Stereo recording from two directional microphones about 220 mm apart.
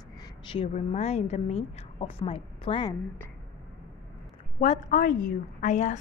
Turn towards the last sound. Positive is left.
turn(degrees=35)  # may be behind; listen again after turning